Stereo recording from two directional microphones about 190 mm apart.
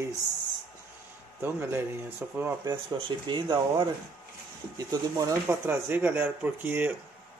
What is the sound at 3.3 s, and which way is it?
Speech, 25° right (ahead or behind).